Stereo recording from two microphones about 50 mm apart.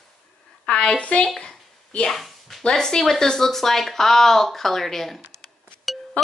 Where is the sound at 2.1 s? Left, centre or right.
Centre.